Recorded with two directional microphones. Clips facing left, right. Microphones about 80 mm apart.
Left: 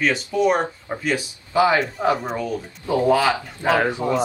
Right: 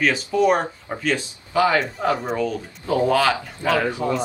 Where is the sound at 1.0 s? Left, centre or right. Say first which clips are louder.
Right 1 dB; centre.